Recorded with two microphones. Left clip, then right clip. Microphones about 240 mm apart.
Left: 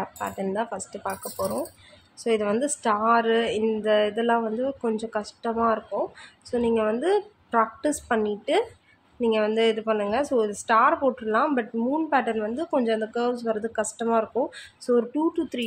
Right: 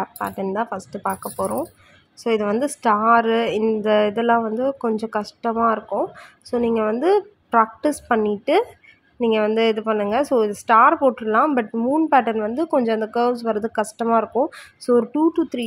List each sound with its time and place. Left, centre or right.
0.0 s a woman's voice: centre